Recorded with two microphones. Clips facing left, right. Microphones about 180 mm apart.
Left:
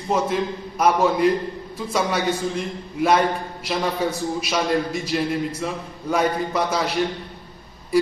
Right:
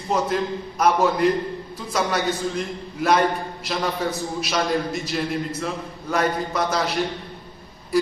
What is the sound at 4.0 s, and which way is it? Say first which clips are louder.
A man's voice: left 2 dB; 10° left (ahead or behind).